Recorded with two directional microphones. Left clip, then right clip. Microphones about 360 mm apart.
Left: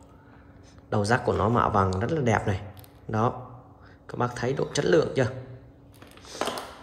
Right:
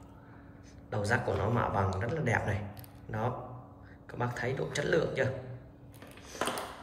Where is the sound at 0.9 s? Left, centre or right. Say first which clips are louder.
Left 7 dB; centre.